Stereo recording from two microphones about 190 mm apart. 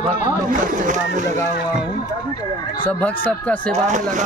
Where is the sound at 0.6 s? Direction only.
40° right (ahead or behind).